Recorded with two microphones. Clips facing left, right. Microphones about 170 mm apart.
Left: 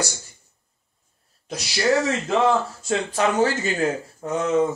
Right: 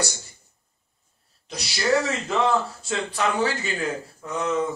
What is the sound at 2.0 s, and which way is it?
A man's voice, 40° left (ahead or behind).